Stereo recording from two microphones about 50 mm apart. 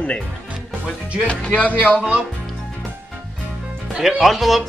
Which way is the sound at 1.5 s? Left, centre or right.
Left.